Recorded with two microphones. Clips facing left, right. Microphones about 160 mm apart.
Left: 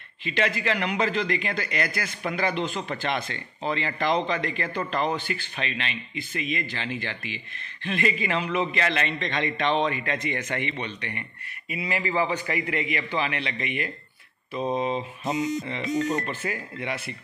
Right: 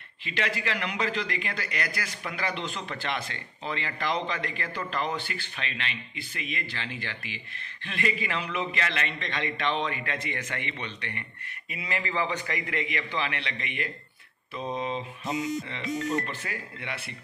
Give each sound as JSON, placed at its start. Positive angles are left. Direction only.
{"t": 0.2, "sound": "a man's voice", "side_deg": 25}